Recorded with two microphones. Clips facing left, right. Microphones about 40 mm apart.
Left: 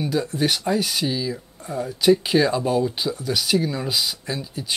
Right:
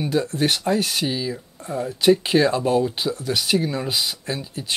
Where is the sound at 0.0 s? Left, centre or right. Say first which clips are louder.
Right 1 dB; centre.